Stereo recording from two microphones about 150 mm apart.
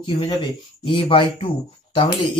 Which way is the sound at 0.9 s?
35° left (ahead or behind).